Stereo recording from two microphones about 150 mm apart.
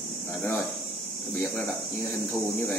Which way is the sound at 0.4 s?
Centre (ahead or behind).